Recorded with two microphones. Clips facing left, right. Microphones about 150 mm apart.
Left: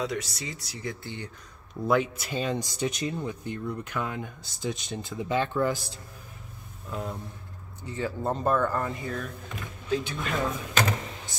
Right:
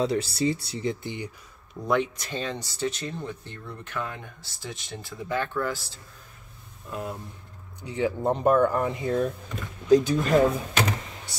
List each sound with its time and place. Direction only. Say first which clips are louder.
0.0 s speech: right 7 dB; 30° right (ahead or behind)
1.0 s speech: right 4 dB; 15° right (ahead or behind)
1.9 s speech: even; 5° left (ahead or behind)
6.9 s speech: right 1 dB; 5° right (ahead or behind)
7.8 s speech: right 5 dB; 15° right (ahead or behind)
9.8 s speech: right 10 dB; 40° right (ahead or behind)